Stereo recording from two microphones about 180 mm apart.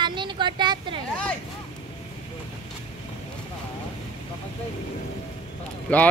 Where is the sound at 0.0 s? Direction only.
25° right (ahead or behind).